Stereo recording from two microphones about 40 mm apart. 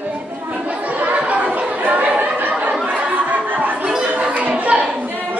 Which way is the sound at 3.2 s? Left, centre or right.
Right.